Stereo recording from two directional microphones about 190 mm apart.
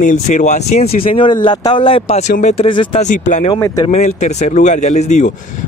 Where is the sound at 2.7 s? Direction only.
25° left (ahead or behind).